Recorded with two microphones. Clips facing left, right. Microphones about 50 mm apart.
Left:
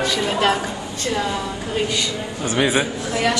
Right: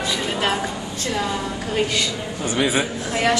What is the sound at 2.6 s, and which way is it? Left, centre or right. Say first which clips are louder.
Speech: left 2 dB; centre.